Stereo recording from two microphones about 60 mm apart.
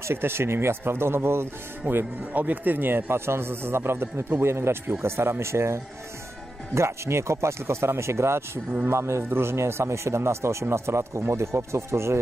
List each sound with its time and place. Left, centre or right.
0.0 s speech: right